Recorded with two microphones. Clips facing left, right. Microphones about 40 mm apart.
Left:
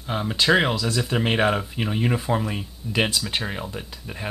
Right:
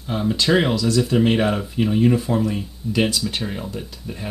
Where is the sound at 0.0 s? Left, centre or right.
Centre.